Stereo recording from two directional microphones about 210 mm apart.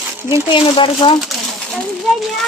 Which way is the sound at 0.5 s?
25° left (ahead or behind).